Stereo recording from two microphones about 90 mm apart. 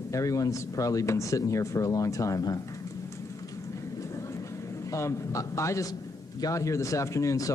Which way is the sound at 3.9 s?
35° left (ahead or behind).